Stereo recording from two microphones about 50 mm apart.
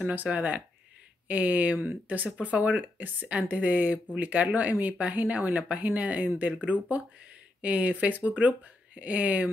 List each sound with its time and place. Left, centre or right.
0.0 s speech: right